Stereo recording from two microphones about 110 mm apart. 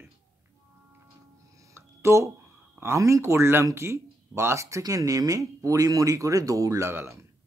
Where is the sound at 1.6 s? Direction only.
25° right (ahead or behind).